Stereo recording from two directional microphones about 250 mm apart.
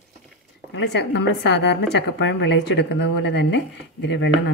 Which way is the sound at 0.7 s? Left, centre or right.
Left.